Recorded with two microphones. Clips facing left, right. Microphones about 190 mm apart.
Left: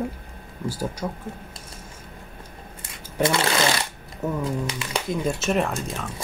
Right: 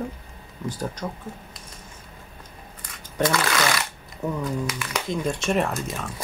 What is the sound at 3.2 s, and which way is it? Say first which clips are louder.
Sewing machine: left 1 dB; 25° left (ahead or behind).